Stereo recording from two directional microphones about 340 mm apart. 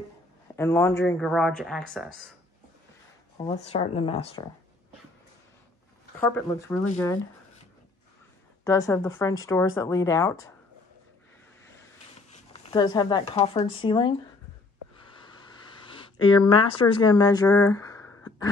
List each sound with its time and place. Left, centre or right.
0.6 s speech: centre
3.7 s speech: centre
6.1 s speech: centre
8.6 s speech: centre
12.6 s speech: centre
15.1 s a sound: centre